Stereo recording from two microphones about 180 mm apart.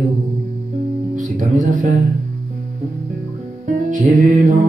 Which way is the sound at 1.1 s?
45° right (ahead or behind).